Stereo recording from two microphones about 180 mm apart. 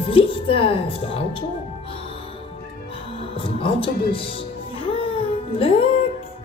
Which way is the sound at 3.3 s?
30° left (ahead or behind).